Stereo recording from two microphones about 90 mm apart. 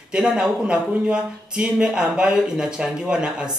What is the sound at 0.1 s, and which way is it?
Speech, 5° right (ahead or behind).